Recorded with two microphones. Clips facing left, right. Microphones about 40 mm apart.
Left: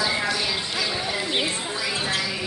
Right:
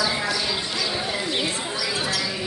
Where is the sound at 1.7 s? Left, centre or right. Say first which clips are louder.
Right 1 dB; left.